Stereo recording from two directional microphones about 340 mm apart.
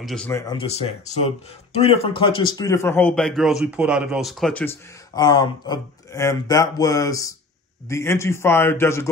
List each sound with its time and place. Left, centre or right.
0.0 s speech: centre